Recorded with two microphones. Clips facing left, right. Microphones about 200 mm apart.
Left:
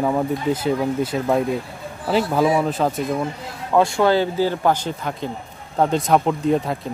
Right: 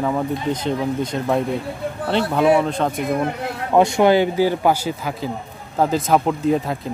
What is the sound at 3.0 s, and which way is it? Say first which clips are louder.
Speech: right 2 dB; 65° right (ahead or behind).